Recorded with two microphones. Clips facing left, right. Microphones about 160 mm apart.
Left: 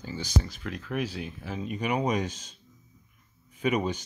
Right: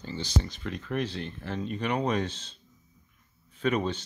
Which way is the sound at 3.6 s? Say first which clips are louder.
Even; 10° left (ahead or behind).